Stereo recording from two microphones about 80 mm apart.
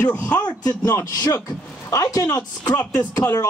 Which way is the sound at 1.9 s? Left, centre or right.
Left.